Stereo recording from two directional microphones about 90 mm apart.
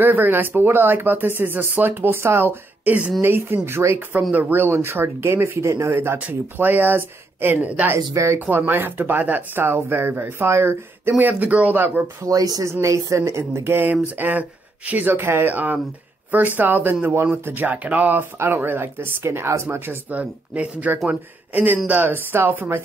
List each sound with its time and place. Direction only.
0.0 s speech: 20° right (ahead or behind)
6.1 s speech: 20° right (ahead or behind)
8.1 s speech: 35° right (ahead or behind)
12.3 s speech: 40° right (ahead or behind)
20.1 s speech: 15° right (ahead or behind)